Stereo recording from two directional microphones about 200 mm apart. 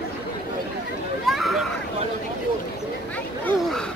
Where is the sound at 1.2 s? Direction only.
Centre (ahead or behind).